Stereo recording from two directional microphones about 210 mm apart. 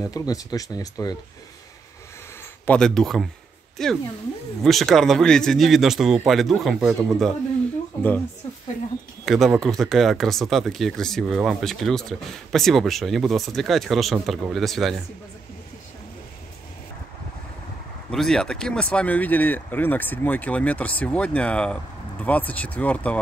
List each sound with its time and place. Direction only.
0.0 s speech: 15° left (ahead or behind)
2.6 s speech: 5° left (ahead or behind)
9.2 s speech: centre (ahead or behind)
18.1 s speech: centre (ahead or behind)